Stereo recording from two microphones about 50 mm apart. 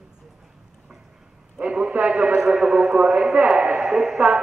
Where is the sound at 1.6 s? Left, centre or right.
Right.